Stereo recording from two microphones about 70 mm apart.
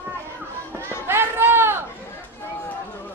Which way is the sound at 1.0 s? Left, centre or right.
Right.